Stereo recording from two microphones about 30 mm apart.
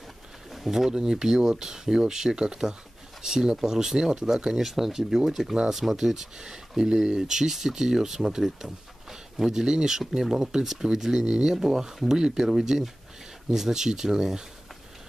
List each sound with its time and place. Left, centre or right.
0.7 s speech: centre
4.6 s speech: centre
6.8 s speech: right
7.2 s speech: centre